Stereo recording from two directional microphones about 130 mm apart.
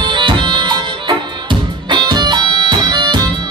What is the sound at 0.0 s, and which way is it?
Music, 35° right (ahead or behind).